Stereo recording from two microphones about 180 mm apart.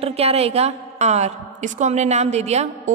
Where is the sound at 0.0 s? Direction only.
35° right (ahead or behind).